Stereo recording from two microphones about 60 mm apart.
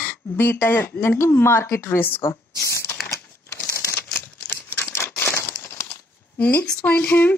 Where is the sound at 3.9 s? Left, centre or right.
Left.